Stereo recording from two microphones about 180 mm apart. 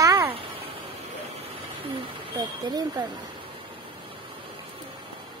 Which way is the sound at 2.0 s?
25° right (ahead or behind).